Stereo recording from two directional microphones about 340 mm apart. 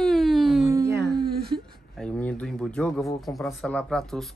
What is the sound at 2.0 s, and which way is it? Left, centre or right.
Speech, centre.